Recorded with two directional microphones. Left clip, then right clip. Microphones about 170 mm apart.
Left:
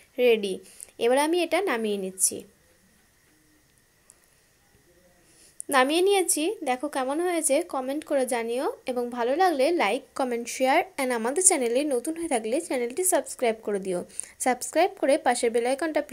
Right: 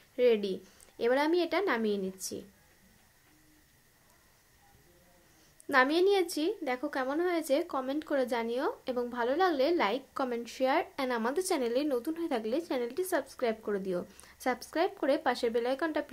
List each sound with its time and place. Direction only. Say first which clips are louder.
0.1 s a woman's voice: left 5 dB; 20° left (ahead or behind)
5.7 s a woman's voice: left 4 dB; 25° left (ahead or behind)